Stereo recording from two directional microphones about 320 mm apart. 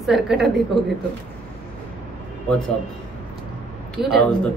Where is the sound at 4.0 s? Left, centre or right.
Centre.